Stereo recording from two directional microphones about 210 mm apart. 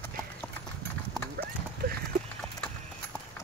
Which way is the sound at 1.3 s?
45° right (ahead or behind).